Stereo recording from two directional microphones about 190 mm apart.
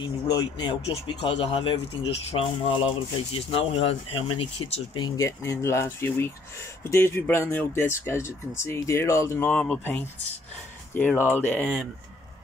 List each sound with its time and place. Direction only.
0.0 s speech: 25° left (ahead or behind)